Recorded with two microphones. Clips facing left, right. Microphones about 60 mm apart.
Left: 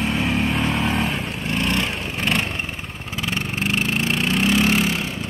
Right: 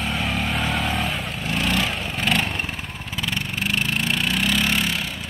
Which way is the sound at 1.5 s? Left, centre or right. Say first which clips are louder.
Even; centre.